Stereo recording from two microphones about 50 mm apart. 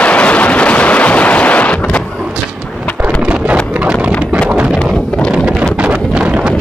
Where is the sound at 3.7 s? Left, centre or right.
Right.